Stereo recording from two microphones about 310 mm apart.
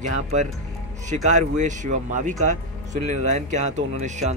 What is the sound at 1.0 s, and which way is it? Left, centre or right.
Speech, right.